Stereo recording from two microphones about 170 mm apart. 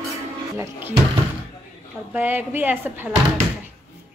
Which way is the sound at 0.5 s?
15° right (ahead or behind).